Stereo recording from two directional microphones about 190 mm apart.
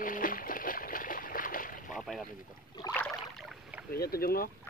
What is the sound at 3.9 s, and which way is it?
Speech, 55° left (ahead or behind).